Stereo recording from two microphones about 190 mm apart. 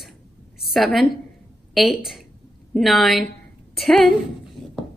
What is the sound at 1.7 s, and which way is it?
A woman's voice, centre (ahead or behind).